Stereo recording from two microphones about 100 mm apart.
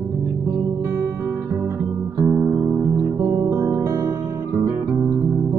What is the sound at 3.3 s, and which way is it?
Music, 35° right (ahead or behind).